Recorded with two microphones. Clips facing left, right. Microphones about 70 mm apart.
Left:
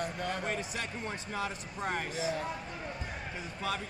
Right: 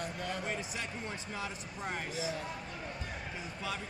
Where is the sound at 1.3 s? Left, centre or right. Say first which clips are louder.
Left 4 dB; left.